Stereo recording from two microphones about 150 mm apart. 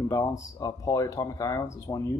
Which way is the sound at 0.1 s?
20° left (ahead or behind).